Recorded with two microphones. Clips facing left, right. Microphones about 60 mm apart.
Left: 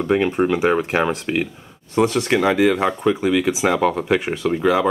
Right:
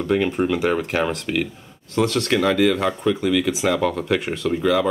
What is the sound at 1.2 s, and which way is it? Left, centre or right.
Speech, left.